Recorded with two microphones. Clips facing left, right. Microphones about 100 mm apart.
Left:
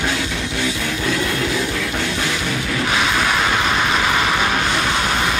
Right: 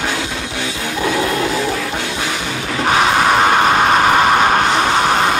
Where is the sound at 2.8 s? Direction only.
50° right (ahead or behind).